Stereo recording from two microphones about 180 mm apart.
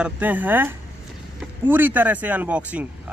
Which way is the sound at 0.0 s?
10° right (ahead or behind).